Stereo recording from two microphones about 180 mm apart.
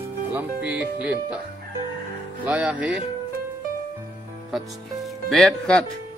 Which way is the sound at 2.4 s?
10° right (ahead or behind).